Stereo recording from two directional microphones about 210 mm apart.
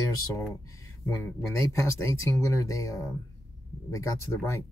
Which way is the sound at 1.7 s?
15° left (ahead or behind).